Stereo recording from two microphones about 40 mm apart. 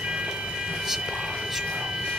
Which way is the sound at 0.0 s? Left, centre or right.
Right.